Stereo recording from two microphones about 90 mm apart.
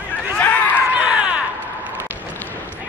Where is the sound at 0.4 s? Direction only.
15° left (ahead or behind).